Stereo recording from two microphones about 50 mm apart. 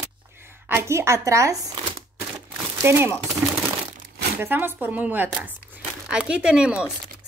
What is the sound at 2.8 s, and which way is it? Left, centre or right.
Speech, right.